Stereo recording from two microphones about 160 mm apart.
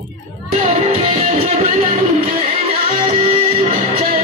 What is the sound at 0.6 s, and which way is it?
Music, 35° right (ahead or behind).